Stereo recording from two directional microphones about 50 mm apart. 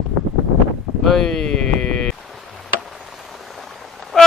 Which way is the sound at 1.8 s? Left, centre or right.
Left.